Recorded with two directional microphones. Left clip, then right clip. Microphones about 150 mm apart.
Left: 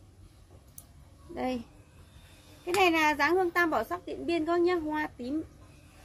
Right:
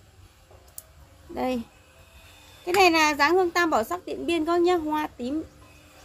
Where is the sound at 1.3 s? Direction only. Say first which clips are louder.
Right 5 dB; 15° right (ahead or behind).